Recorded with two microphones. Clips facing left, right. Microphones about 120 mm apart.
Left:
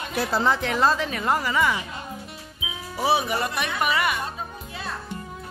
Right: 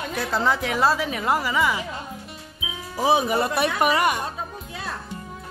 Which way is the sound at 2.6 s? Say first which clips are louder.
Right 1 dB; centre (ahead or behind).